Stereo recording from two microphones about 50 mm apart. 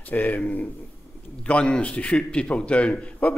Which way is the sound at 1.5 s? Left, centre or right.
Left.